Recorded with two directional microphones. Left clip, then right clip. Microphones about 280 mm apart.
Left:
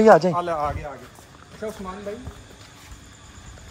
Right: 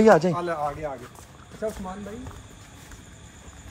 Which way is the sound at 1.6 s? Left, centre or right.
Centre.